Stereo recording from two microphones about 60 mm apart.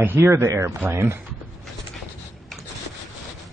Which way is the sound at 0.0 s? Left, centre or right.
Right.